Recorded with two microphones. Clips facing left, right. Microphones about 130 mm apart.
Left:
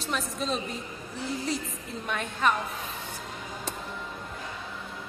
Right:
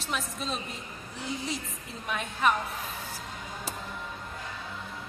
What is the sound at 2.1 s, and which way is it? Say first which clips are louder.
Speech: even; 5° right (ahead or behind).